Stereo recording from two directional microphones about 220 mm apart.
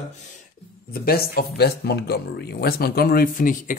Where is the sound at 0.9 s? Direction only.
45° left (ahead or behind).